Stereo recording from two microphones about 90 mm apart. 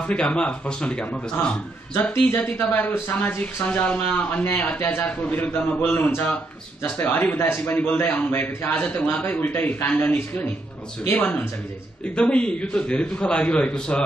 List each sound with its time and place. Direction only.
0.0 s a man's voice: 10° left (ahead or behind)
2.2 s a man's voice: 25° left (ahead or behind)